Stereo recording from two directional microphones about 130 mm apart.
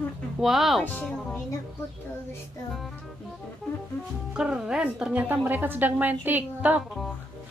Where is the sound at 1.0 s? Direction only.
10° left (ahead or behind).